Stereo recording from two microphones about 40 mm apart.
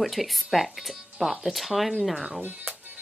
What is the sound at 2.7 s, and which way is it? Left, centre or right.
Music, right.